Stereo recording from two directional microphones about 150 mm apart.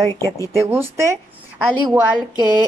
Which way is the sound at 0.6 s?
15° right (ahead or behind).